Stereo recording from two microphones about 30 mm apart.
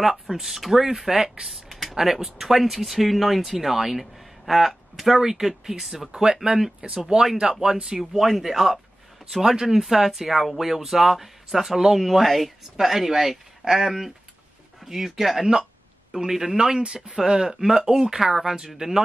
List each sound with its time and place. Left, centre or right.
0.0 s speech: centre
1.5 s a sound: centre
2.0 s speech: centre
6.1 s speech: centre
8.0 s speech: centre
9.8 s speech: centre
12.0 s speech: centre